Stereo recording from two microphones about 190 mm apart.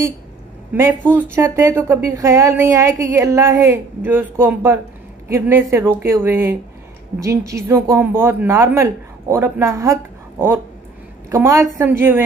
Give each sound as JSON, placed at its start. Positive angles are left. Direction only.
{"t": 0.7, "sound": "a woman's voice", "side_deg": -15}
{"t": 11.2, "sound": "a woman's voice", "side_deg": -15}